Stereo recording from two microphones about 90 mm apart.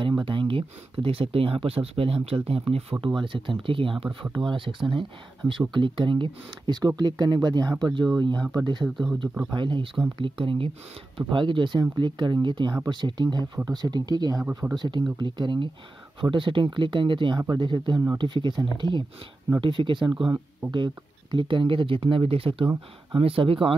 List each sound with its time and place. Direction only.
0.2 s speech: 80° right; by 8.8 s 50° right (ahead or behind)
9.5 s speech: 65° right (ahead or behind); by 10.7 s 80° right
11.1 s speech: 65° right (ahead or behind); by 23.7 s 85° right